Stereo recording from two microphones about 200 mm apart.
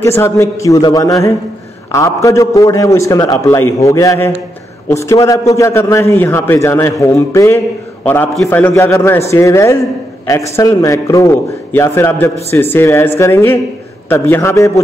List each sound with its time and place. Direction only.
0.0 s a man's voice: 15° left (ahead or behind)